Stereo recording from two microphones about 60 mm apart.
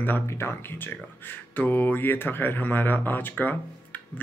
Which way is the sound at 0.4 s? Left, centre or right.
Left.